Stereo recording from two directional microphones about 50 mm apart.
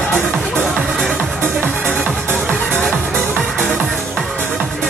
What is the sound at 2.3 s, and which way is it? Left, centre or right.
Music, left.